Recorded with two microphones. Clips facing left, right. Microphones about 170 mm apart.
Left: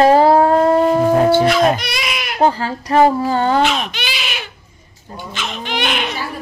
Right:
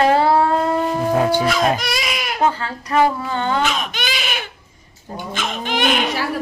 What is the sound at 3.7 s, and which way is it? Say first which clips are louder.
Baby cry: left 1 dB; 50° right (ahead or behind).